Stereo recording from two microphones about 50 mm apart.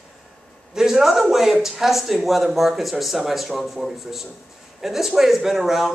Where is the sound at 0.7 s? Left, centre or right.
Centre.